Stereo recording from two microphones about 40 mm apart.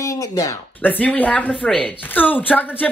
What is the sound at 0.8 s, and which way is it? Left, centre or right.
Speech, left.